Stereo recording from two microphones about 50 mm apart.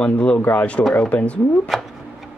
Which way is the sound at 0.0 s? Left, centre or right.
Left.